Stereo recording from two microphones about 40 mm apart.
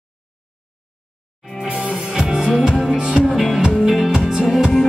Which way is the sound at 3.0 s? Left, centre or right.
Right.